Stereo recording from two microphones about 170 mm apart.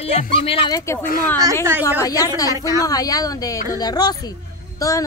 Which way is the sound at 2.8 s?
20° left (ahead or behind).